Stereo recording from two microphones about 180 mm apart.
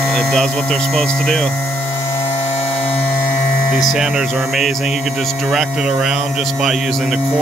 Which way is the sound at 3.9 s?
5° right (ahead or behind).